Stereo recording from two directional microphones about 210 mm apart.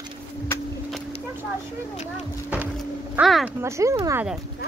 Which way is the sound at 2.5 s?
5° right (ahead or behind).